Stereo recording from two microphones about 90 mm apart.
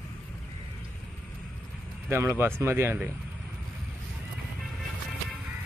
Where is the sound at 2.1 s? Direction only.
25° right (ahead or behind).